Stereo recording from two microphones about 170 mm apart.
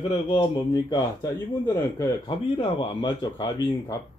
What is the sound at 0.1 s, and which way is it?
Speech, 25° left (ahead or behind).